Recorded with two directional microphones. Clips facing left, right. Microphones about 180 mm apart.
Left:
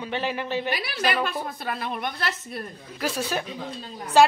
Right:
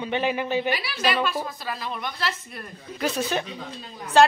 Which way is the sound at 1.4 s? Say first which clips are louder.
Left 1 dB; 55° left (ahead or behind).